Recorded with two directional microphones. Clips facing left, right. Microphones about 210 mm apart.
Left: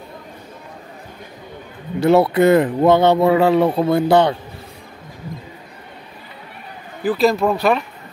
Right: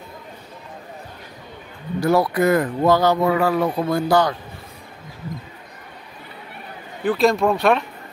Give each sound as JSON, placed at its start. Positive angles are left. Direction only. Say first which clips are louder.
{"t": 2.0, "sound": "speech", "louder": "left 5 dB", "side_deg": 25}
{"t": 7.0, "sound": "speech", "louder": "left 1 dB", "side_deg": 5}